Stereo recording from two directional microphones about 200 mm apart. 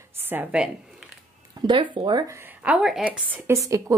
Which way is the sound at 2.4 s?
10° right (ahead or behind).